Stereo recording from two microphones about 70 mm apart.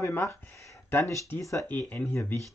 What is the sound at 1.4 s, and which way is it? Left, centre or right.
Speech, left.